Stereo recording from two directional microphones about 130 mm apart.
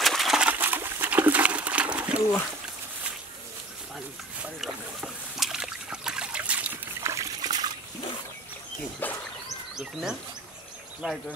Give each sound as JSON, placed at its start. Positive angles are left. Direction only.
{"t": 0.0, "sound": "a sound", "side_deg": 0}
{"t": 4.4, "sound": "boat", "side_deg": -5}
{"t": 7.1, "sound": "trickle", "side_deg": -25}
{"t": 9.0, "sound": "speech", "side_deg": 15}
{"t": 11.0, "sound": "speech", "side_deg": -5}